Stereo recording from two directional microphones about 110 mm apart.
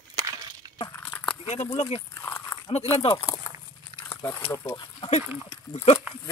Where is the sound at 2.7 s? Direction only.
60° left (ahead or behind).